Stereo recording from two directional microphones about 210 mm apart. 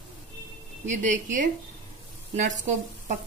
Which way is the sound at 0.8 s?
35° right (ahead or behind).